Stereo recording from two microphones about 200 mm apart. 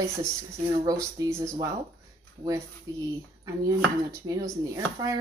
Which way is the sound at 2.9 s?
15° right (ahead or behind).